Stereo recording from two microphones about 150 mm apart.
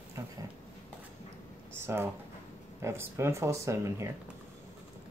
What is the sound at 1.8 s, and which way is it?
Speech, 15° right (ahead or behind).